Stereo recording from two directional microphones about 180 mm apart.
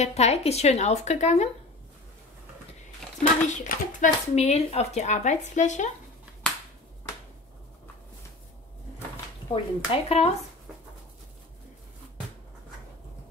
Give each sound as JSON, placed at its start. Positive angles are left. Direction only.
{"t": 0.0, "sound": "speech", "side_deg": 35}
{"t": 3.4, "sound": "speech", "side_deg": 45}
{"t": 9.5, "sound": "speech", "side_deg": 30}